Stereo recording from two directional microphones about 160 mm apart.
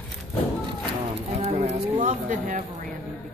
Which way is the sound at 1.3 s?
45° right (ahead or behind).